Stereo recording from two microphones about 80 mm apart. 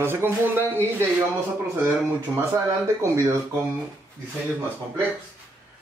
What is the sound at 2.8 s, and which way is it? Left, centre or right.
Speech, right.